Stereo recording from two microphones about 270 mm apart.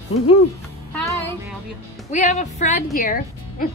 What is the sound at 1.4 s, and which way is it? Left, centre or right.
Speech, centre.